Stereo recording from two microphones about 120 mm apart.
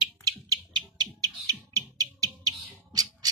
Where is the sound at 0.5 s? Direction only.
35° right (ahead or behind).